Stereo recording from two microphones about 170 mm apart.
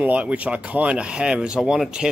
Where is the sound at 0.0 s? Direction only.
5° right (ahead or behind).